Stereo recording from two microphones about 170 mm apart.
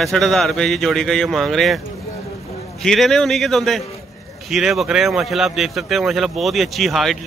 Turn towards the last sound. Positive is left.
turn(degrees=0)  # may be behind; listen again after turning